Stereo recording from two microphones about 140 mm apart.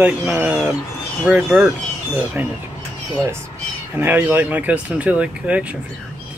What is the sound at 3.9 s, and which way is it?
Speech, 15° right (ahead or behind).